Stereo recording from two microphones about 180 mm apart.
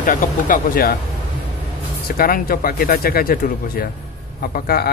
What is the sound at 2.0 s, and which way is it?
Speech, 55° left (ahead or behind).